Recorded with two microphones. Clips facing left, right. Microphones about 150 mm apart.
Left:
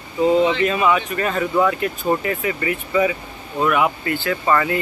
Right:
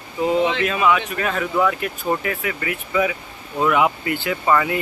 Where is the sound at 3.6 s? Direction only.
15° right (ahead or behind).